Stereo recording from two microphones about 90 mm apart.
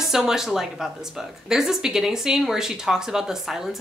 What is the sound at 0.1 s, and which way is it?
Speech, 5° right (ahead or behind).